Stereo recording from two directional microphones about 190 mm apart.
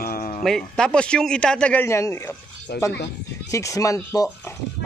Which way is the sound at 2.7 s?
60° left (ahead or behind).